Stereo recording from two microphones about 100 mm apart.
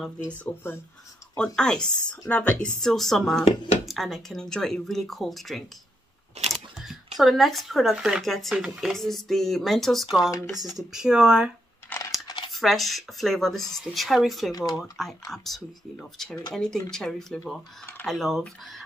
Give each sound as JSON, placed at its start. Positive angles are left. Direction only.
{"t": 0.4, "sound": "speech", "side_deg": 25}
{"t": 1.3, "sound": "a woman's voice", "side_deg": 5}
{"t": 11.9, "sound": "coin", "side_deg": 20}
{"t": 12.4, "sound": "speech", "side_deg": 0}
{"t": 14.5, "sound": "speech", "side_deg": 40}
{"t": 14.8, "sound": "a woman's voice", "side_deg": 0}